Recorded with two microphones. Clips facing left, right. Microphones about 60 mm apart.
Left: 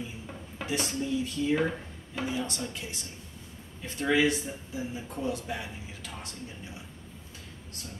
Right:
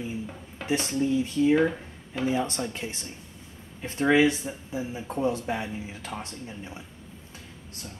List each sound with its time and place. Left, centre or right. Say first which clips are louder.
0.7 s speech: right 5 dB; right
1.5 s speech: right 5 dB; centre
2.2 s speech: right 7 dB; right
5.0 s speech: right 10 dB; right